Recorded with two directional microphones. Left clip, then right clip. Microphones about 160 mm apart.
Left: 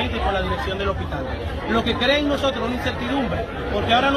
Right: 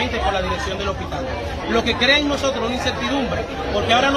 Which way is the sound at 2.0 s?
5° right (ahead or behind).